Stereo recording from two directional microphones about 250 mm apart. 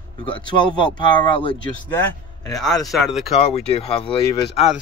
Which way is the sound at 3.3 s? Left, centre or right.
Left.